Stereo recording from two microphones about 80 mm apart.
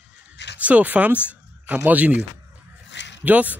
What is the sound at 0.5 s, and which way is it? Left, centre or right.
Speech, centre.